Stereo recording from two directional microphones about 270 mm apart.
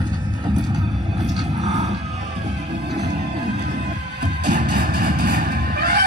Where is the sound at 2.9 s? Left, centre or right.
Right.